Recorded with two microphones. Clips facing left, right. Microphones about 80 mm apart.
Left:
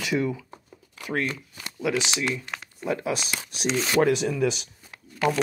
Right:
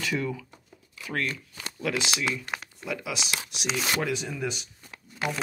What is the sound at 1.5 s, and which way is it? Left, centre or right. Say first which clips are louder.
Shuffling cards: left 4 dB; centre.